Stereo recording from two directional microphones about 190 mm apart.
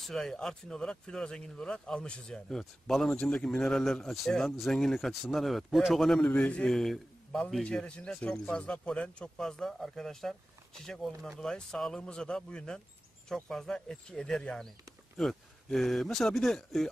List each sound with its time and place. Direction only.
0.0 s speech: centre (ahead or behind)